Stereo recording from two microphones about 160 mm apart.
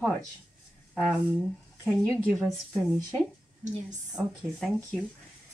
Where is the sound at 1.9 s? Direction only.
5° left (ahead or behind).